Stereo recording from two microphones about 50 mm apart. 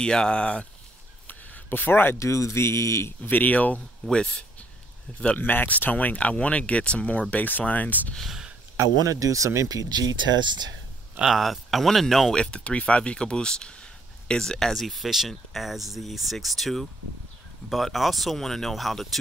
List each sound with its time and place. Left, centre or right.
0.0 s speech: centre
1.2 s a sound: left
2.1 s speech: left
3.2 s speech: left
4.1 s speech: centre
5.4 s speech: left
8.7 s speech: right
11.2 s speech: centre
12.4 s speech: left
14.7 s speech: centre